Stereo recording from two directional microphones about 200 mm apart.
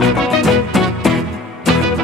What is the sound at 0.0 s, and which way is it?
Music, centre (ahead or behind).